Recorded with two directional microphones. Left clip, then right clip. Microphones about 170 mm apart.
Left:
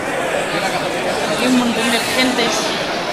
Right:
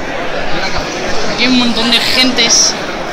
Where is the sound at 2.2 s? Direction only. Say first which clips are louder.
Right 6 dB; 20° right (ahead or behind).